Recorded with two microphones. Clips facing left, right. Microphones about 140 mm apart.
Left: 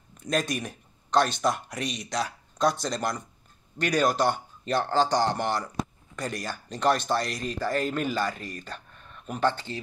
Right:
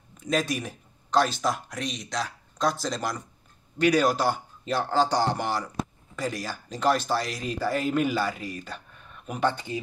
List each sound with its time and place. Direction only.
0.3 s speech: centre (ahead or behind)